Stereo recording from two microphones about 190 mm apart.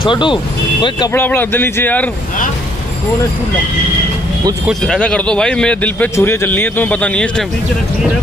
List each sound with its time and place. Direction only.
0.0 s speech: 25° left (ahead or behind)
1.1 s speech: 10° left (ahead or behind)
4.6 s speech: 5° left (ahead or behind)